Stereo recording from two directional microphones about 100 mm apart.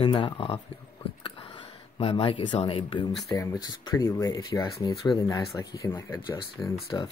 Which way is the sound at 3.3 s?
35° left (ahead or behind).